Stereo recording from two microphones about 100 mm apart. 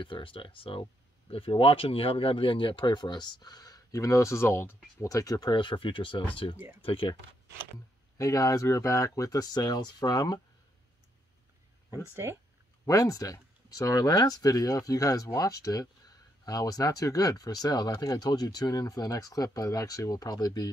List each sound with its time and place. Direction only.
0.0 s speech: 60° left (ahead or behind); by 4.7 s 25° left (ahead or behind)
5.0 s speech: 35° left (ahead or behind); by 6.2 s 55° left (ahead or behind)
6.8 s speech: 65° left (ahead or behind)
8.2 s speech: 35° left (ahead or behind)
12.2 s speech: 30° right (ahead or behind)
12.8 s speech: 35° left (ahead or behind)